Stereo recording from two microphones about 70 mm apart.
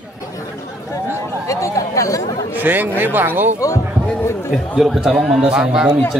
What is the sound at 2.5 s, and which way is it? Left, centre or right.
Speech, right.